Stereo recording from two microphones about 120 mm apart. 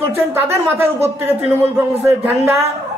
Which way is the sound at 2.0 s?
20° right (ahead or behind).